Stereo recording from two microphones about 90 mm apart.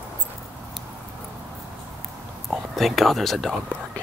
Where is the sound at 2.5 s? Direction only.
Centre (ahead or behind).